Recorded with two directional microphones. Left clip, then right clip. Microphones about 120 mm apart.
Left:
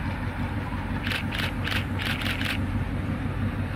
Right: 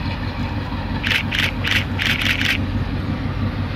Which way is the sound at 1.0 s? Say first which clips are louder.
Right 11 dB; 5° left (ahead or behind).